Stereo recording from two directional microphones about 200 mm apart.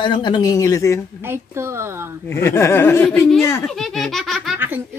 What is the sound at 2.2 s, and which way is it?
Speech, 10° left (ahead or behind).